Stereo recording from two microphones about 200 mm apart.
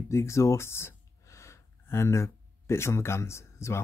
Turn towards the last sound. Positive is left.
turn(degrees=15)  # may be behind; listen again after turning